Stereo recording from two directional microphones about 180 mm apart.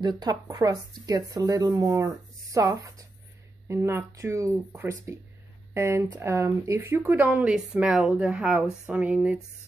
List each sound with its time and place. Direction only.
0.0 s speech: 20° right (ahead or behind); by 9.4 s 5° right (ahead or behind)